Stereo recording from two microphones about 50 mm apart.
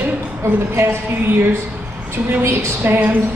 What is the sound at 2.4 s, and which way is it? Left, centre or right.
Speech, right.